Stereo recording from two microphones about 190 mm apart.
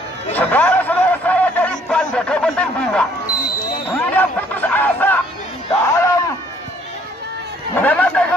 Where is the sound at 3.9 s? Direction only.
10° left (ahead or behind).